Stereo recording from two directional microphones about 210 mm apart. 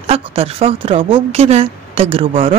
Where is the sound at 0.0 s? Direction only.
25° right (ahead or behind).